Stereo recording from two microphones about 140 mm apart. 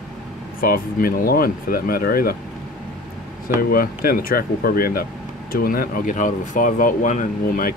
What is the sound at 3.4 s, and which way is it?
Speech, 90° left.